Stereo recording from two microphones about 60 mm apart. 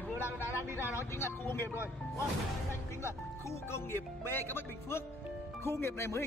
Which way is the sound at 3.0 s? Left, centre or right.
Left.